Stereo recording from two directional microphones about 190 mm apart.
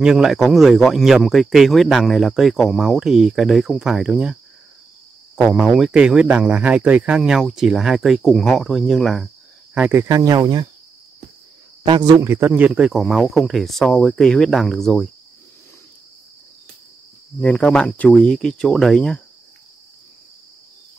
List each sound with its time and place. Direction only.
0.0 s speech: 5° right (ahead or behind)
5.4 s speech: centre (ahead or behind)
9.8 s speech: 10° right (ahead or behind)
11.8 s speech: 20° right (ahead or behind); by 15.0 s centre (ahead or behind)
17.4 s speech: 5° left (ahead or behind)